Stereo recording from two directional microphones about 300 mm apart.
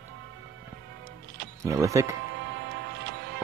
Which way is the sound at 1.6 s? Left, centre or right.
Centre.